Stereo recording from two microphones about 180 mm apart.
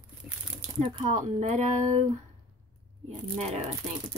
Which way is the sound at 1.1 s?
40° right (ahead or behind).